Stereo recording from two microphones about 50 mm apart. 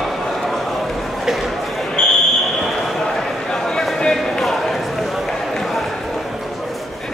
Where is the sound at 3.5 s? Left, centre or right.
Centre.